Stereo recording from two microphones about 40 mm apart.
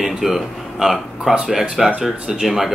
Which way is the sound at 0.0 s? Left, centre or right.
Centre.